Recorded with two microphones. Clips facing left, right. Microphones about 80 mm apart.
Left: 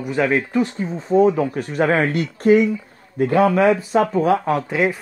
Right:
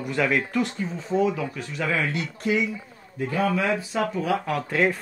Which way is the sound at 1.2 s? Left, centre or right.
Left.